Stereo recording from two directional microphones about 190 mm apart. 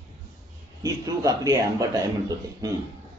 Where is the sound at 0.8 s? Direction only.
20° right (ahead or behind).